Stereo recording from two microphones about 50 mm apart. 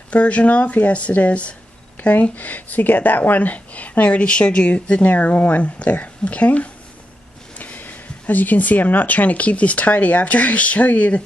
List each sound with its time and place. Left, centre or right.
0.1 s speech: left
5.1 s speech: left